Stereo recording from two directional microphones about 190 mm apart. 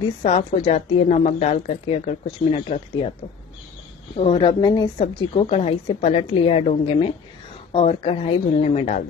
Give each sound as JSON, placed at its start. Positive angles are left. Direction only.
{"t": 0.2, "sound": "a woman's voice", "side_deg": 30}
{"t": 4.2, "sound": "a woman's voice", "side_deg": 25}